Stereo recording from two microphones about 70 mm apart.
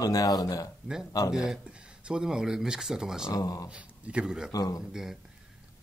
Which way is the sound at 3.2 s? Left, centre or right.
Left.